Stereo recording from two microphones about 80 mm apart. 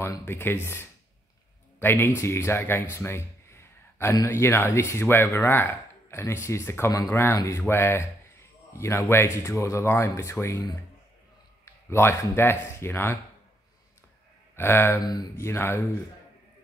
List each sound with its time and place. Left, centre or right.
0.2 s a man's voice: left
11.6 s speech: left
14.5 s speech: left
15.0 s speech: left
15.3 s speech: left